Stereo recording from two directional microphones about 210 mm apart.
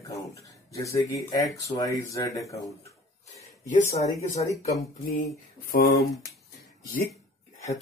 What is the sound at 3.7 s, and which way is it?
Speech, 35° left (ahead or behind).